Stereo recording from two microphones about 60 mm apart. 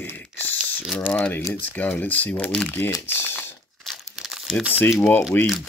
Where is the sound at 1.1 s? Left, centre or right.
Left.